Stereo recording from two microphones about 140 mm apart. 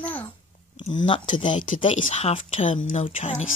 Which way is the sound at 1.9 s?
55° left (ahead or behind).